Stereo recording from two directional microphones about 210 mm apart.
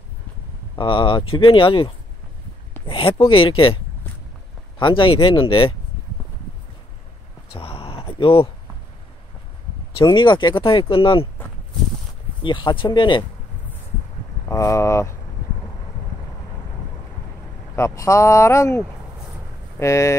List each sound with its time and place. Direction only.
0.7 s speech: 25° left (ahead or behind)
2.9 s speech: 25° left (ahead or behind)
7.5 s a sound: 25° left (ahead or behind)
9.9 s speech: 25° left (ahead or behind)
12.4 s speech: 25° left (ahead or behind)
14.5 s speech: 15° left (ahead or behind)
17.7 s speech: 15° left (ahead or behind)
19.8 s speech: 15° left (ahead or behind)